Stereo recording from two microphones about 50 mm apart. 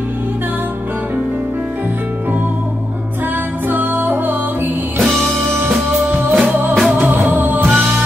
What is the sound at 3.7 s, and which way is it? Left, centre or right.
Music, right.